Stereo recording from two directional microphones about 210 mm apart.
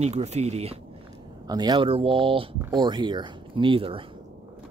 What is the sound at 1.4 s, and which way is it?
Speech, 20° right (ahead or behind).